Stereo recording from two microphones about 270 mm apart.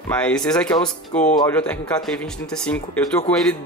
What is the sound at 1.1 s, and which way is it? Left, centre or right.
Speech, left.